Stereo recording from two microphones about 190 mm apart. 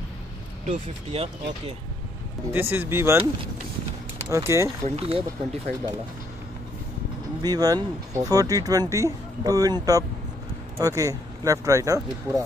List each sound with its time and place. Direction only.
0.7 s speech: 30° right (ahead or behind)
2.5 s speech: 10° right (ahead or behind)
4.3 s speech: 15° right (ahead or behind)
4.8 s speech: 30° right (ahead or behind)
7.4 s speech: 20° right (ahead or behind)